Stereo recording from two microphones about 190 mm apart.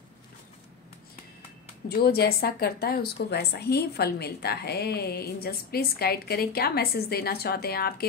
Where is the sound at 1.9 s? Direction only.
55° left (ahead or behind).